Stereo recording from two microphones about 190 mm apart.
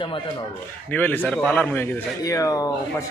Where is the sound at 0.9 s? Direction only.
10° left (ahead or behind).